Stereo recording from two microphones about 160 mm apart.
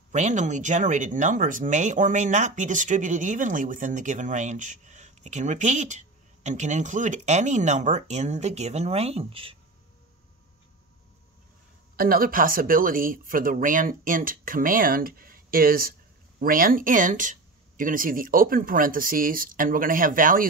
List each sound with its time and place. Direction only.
0.1 s speech: 45° right (ahead or behind)
12.0 s speech: 65° right (ahead or behind)